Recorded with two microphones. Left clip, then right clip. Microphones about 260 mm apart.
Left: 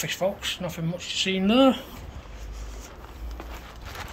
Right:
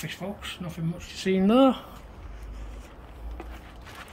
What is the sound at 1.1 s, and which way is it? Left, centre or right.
Speech, right.